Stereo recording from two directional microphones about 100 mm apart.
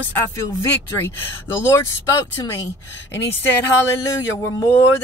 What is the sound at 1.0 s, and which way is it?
Speech, 25° left (ahead or behind).